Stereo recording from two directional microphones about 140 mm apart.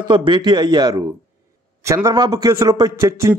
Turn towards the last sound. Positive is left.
turn(degrees=-20)  # may be behind; listen again after turning